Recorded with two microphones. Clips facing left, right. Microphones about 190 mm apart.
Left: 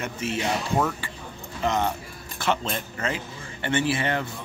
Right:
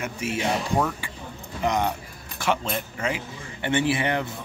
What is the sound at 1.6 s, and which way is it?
A man's voice, 15° right (ahead or behind).